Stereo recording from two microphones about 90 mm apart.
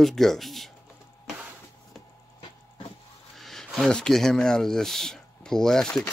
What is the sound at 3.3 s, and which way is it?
Speech, 5° left (ahead or behind).